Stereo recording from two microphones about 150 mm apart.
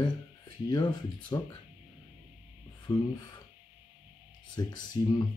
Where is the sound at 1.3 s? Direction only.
25° left (ahead or behind).